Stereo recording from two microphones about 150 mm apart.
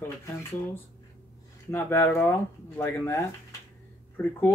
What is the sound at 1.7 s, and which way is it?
Speech, 15° left (ahead or behind).